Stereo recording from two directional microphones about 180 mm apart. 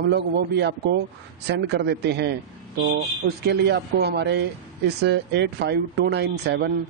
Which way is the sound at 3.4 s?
65° right (ahead or behind).